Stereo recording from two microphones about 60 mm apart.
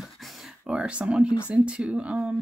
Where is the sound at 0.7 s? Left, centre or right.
Centre.